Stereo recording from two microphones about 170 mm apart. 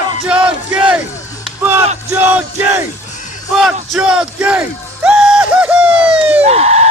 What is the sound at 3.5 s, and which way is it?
Speech, centre (ahead or behind).